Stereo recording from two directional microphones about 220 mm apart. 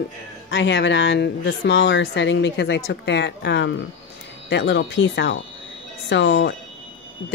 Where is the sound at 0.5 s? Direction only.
55° left (ahead or behind).